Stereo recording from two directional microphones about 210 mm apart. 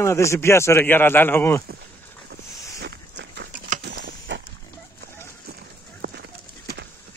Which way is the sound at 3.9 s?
55° right (ahead or behind).